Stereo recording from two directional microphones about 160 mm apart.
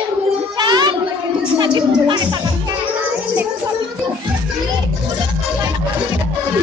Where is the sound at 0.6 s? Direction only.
25° right (ahead or behind).